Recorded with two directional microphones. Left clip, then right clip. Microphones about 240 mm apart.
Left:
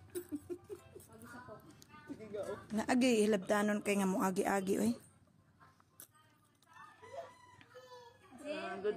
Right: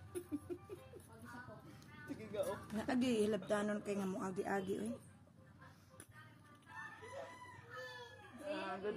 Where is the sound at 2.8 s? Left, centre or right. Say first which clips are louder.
Left 6 dB; left.